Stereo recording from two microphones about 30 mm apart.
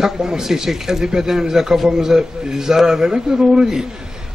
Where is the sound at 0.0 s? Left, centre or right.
Centre.